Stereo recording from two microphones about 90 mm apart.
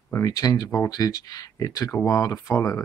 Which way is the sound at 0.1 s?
35° left (ahead or behind).